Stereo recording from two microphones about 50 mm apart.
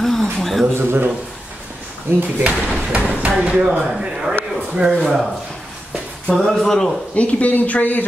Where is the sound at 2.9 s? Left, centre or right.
Right.